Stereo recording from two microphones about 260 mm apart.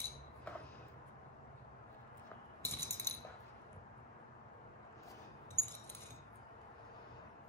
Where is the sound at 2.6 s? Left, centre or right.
Centre.